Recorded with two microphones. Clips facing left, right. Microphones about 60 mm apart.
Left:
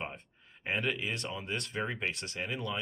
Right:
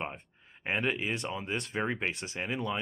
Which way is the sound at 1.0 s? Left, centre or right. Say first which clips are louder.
Right 3 dB; centre.